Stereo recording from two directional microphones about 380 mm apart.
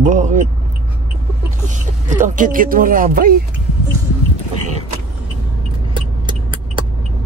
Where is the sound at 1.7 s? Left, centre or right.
Centre.